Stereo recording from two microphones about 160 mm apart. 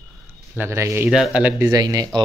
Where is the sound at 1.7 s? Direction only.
25° right (ahead or behind).